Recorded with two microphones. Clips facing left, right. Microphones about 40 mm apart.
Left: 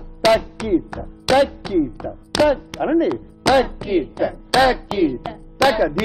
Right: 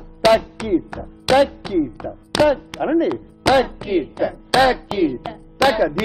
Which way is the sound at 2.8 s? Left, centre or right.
Centre.